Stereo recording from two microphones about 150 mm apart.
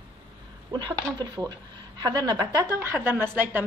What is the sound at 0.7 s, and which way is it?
A woman's voice, 30° right (ahead or behind).